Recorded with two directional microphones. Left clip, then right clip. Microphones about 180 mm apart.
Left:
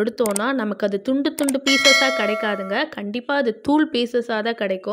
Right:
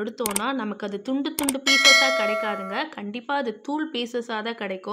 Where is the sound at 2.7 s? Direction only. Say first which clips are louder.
Left 6 dB; 25° left (ahead or behind).